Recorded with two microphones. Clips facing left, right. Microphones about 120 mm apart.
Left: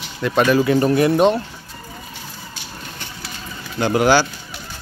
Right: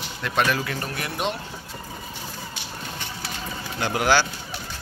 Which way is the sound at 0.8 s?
30° left (ahead or behind).